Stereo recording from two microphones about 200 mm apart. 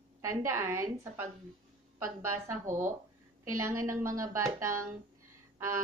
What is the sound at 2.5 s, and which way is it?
Speech, 40° right (ahead or behind).